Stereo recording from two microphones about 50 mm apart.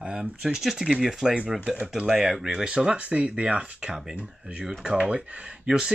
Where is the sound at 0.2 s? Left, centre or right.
Centre.